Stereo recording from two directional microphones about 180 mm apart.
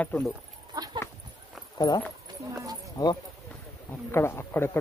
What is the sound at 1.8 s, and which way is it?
Speech, 20° left (ahead or behind).